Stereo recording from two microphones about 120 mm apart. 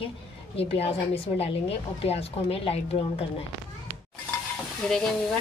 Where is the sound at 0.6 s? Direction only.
55° left (ahead or behind).